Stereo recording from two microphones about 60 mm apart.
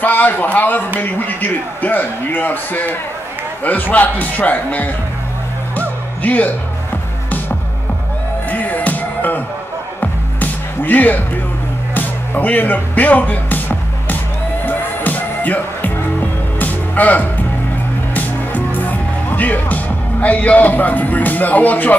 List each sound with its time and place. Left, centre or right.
0.0 s a man's voice: left
5.8 s music: left
8.5 s music: left